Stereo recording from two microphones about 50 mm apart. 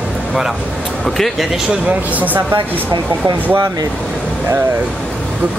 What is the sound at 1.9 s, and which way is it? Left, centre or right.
Speech, right.